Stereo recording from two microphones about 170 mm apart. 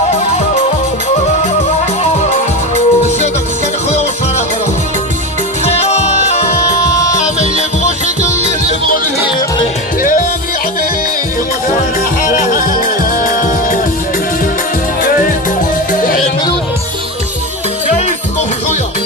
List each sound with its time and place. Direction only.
2.2 s music: 40° left (ahead or behind)
5.9 s music: 40° left (ahead or behind)
12.3 s music: 50° left (ahead or behind)